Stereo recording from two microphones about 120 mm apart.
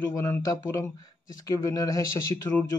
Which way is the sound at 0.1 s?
30° left (ahead or behind).